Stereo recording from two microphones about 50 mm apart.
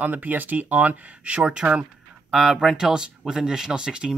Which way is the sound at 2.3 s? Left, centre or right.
Centre.